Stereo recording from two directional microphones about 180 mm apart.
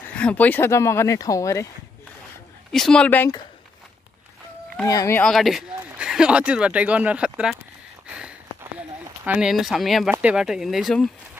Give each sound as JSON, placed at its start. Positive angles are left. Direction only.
{"t": 0.1, "sound": "speech", "side_deg": 5}
{"t": 2.7, "sound": "speech", "side_deg": 5}
{"t": 4.8, "sound": "speech", "side_deg": 15}
{"t": 5.2, "sound": "speech", "side_deg": 0}
{"t": 8.1, "sound": "a sound", "side_deg": -5}
{"t": 10.1, "sound": "speech", "side_deg": -5}